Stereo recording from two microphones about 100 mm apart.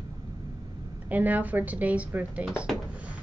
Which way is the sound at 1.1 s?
15° right (ahead or behind).